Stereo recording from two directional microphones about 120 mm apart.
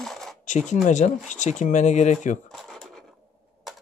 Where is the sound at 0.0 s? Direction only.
Centre (ahead or behind).